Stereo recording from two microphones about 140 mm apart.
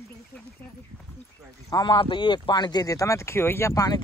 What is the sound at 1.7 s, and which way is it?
Speech, 35° left (ahead or behind).